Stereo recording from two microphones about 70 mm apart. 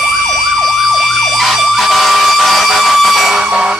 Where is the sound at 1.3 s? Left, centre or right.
Centre.